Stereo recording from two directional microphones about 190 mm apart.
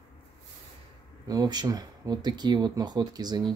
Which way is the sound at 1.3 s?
20° right (ahead or behind).